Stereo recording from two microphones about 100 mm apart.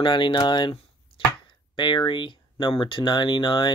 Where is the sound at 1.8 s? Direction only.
50° left (ahead or behind).